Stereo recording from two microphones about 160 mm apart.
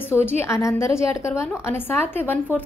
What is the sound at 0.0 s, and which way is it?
A woman's voice, 15° left (ahead or behind).